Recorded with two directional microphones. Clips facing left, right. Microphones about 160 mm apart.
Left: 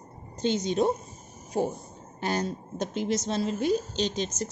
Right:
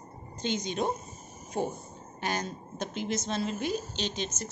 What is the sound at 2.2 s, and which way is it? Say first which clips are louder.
A woman's voice: left 4 dB; 35° left (ahead or behind).